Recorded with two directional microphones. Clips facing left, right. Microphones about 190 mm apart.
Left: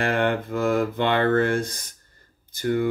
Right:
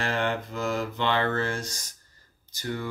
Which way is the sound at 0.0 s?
55° left (ahead or behind).